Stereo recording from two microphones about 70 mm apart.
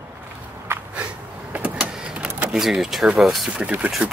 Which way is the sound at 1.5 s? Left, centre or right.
Right.